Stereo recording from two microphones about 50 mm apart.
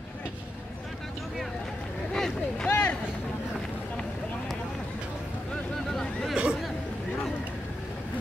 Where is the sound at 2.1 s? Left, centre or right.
Centre.